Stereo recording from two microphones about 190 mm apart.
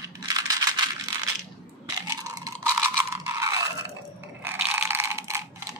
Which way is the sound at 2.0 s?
20° right (ahead or behind).